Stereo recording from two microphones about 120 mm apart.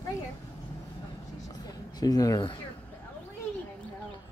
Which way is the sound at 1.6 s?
30° left (ahead or behind).